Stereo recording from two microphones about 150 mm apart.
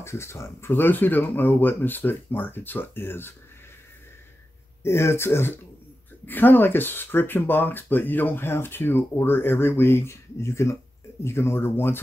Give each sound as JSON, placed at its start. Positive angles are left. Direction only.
{"t": 0.0, "sound": "speech", "side_deg": 15}
{"t": 4.8, "sound": "speech", "side_deg": 15}